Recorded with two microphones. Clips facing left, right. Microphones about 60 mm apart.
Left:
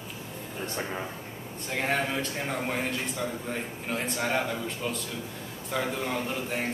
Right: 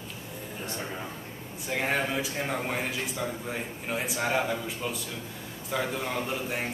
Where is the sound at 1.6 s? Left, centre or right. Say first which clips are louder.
Even; centre.